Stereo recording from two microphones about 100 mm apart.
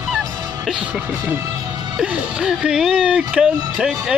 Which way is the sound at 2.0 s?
10° right (ahead or behind).